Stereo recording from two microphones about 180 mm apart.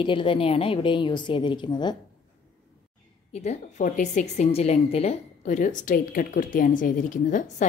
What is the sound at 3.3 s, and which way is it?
A woman's voice, 40° left (ahead or behind).